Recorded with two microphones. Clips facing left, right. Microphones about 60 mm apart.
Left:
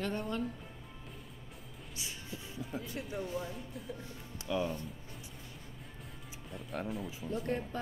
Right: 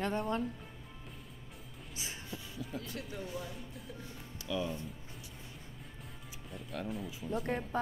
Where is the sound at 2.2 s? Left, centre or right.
Left.